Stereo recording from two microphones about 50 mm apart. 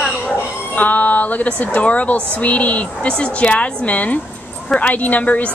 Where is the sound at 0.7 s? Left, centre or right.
Left.